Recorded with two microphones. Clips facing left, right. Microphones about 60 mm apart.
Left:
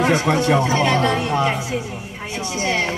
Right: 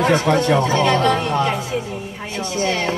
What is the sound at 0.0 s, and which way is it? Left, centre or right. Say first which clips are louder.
A woman's voice: right 1 dB; centre.